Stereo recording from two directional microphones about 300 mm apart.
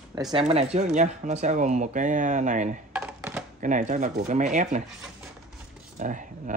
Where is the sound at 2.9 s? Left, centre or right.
Centre.